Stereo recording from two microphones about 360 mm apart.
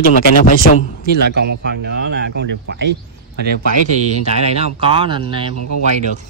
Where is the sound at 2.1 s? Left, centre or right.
Right.